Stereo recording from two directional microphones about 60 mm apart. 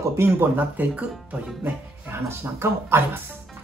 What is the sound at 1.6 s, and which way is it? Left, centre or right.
Speech, right.